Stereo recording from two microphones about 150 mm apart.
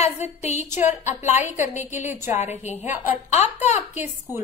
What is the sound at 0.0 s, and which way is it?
A woman's voice, 45° left (ahead or behind).